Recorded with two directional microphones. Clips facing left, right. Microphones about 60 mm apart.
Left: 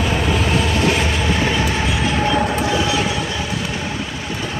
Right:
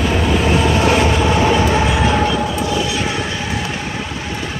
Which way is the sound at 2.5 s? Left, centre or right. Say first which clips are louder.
Even; left.